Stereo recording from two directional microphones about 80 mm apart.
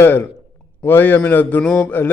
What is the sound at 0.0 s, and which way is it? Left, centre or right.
A man's voice, left.